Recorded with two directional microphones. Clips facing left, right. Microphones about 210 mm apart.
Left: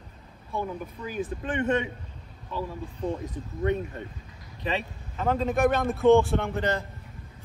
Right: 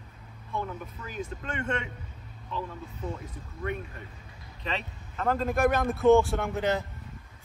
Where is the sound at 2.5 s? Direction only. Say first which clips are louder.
Left 3 dB; 10° left (ahead or behind).